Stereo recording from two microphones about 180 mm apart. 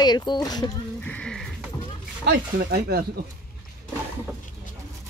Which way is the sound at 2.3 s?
60° right (ahead or behind).